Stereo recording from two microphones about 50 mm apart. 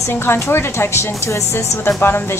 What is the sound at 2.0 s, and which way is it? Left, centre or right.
Speech, left.